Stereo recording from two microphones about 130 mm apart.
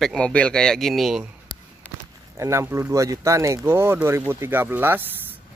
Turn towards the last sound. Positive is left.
turn(degrees=-15)  # may be behind; listen again after turning